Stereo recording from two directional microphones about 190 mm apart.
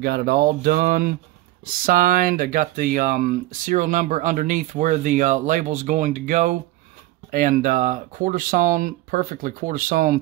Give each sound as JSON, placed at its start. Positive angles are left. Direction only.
{"t": 0.0, "sound": "speech", "side_deg": -55}